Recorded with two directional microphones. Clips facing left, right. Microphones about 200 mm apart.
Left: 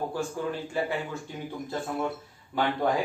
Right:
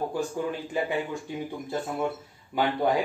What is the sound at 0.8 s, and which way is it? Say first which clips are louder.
Speech: right 1 dB; 15° right (ahead or behind).